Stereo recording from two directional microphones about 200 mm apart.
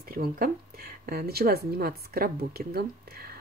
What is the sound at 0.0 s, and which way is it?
Speech, 45° right (ahead or behind).